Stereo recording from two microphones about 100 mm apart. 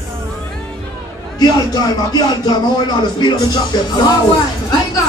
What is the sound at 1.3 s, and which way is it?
Music, 45° left (ahead or behind).